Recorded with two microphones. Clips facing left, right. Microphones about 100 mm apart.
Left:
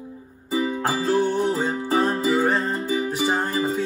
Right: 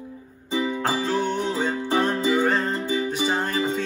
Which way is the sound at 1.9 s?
20° left (ahead or behind).